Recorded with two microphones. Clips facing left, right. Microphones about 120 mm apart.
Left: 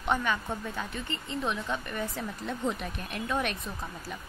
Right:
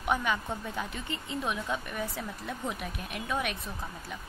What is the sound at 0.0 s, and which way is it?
A woman's voice, 10° right (ahead or behind).